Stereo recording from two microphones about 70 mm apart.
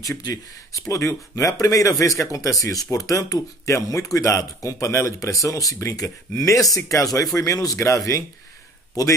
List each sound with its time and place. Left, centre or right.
0.2 s speech: left